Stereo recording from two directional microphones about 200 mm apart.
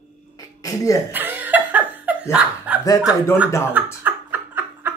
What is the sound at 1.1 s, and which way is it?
Laughter, 10° right (ahead or behind).